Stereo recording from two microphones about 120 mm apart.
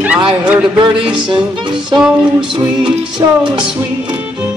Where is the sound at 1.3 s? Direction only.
40° right (ahead or behind).